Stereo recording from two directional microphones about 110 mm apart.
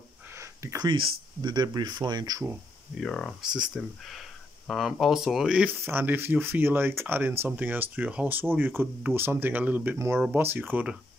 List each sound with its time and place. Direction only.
0.3 s a sound: 25° right (ahead or behind)
0.8 s speech: 50° right (ahead or behind)
3.0 s speech: 5° left (ahead or behind)
5.8 s speech: 20° right (ahead or behind)